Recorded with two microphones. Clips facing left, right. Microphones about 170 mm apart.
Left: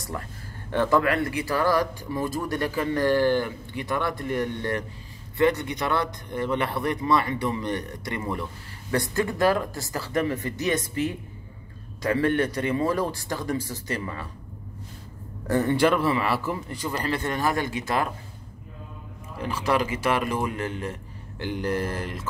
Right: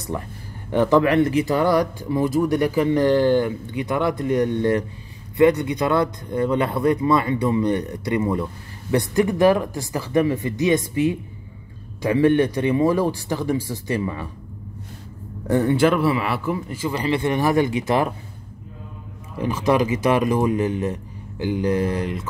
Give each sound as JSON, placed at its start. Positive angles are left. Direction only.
{"t": 0.1, "sound": "speech", "side_deg": -20}
{"t": 15.6, "sound": "speech", "side_deg": -5}
{"t": 19.4, "sound": "speech", "side_deg": -15}